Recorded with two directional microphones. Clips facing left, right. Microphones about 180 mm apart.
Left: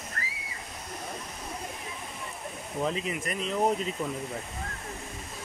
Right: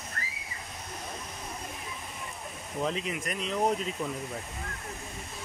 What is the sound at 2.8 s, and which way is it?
Speech, centre (ahead or behind).